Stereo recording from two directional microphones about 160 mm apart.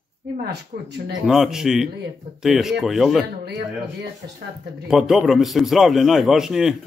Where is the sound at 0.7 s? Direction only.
85° right.